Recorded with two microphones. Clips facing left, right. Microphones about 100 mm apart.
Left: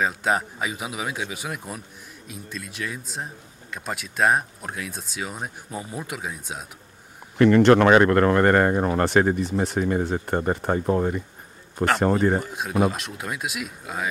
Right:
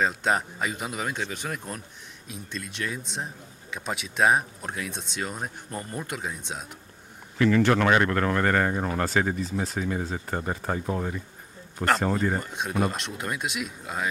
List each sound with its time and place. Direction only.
0.0 s speech: centre (ahead or behind)
7.3 s speech: 55° left (ahead or behind)
9.2 s speech: 60° left (ahead or behind)
9.8 s speech: 45° left (ahead or behind)
12.0 s speech: 60° left (ahead or behind)
12.4 s speech: 5° left (ahead or behind)